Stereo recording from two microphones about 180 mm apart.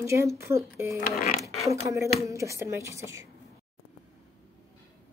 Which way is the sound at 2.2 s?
15° right (ahead or behind).